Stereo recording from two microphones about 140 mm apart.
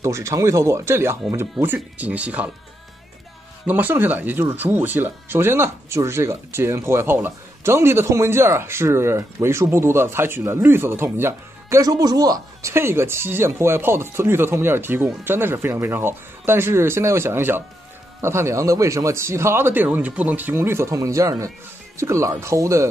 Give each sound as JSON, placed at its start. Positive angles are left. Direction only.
{"t": 0.0, "sound": "speech", "side_deg": -20}
{"t": 3.6, "sound": "speech", "side_deg": -15}